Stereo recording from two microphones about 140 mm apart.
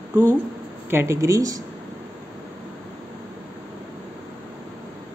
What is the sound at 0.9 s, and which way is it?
Speech, 20° right (ahead or behind).